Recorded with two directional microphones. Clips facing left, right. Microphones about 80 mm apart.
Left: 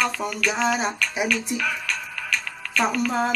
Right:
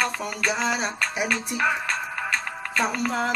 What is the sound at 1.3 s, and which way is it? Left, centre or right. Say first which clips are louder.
Music: right 1 dB; right.